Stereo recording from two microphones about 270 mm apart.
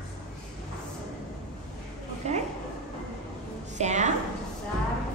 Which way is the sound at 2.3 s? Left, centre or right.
Right.